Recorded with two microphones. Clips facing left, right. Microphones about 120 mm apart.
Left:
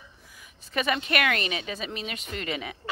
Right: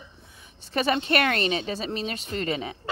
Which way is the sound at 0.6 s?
30° right (ahead or behind).